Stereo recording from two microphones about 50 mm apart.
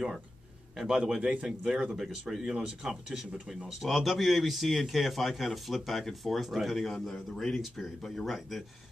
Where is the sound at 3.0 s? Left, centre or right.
Centre.